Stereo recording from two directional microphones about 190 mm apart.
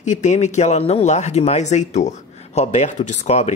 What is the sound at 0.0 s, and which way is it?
Speech, 40° left (ahead or behind).